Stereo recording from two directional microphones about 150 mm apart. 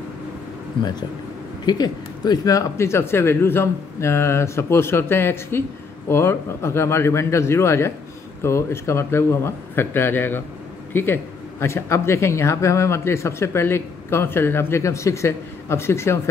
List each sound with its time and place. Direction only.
1.7 s a man's voice: 25° left (ahead or behind)